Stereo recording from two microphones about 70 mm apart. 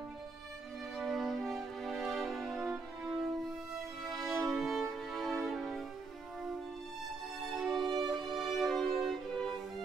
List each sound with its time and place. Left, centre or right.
0.9 s music: centre
4.0 s music: centre
7.4 s music: centre
7.9 s music: right
8.2 s music: centre